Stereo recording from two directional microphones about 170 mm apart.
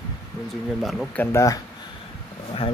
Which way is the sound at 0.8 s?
Centre (ahead or behind).